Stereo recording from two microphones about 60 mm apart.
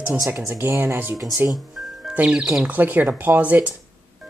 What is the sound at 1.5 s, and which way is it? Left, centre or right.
Music, centre.